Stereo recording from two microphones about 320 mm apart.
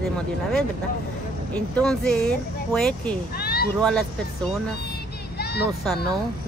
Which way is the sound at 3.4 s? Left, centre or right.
Left.